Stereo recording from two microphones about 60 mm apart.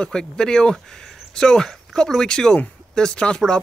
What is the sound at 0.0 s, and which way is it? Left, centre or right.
A man's voice, centre.